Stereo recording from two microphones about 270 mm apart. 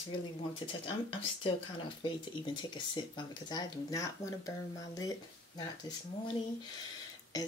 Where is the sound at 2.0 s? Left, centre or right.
Centre.